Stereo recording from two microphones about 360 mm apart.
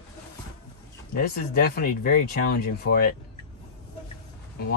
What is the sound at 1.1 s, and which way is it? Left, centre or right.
Speech, left.